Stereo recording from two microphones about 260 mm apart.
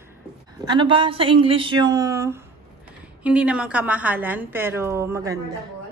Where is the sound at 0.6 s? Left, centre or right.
Centre.